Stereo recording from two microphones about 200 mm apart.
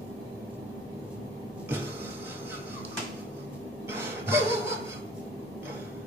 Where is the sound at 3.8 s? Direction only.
10° right (ahead or behind).